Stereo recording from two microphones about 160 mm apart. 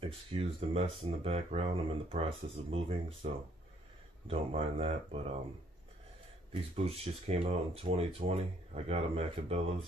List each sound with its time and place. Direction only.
0.0 s speech: 35° right (ahead or behind)
4.3 s speech: 35° right (ahead or behind)
6.7 s speech: 40° right (ahead or behind)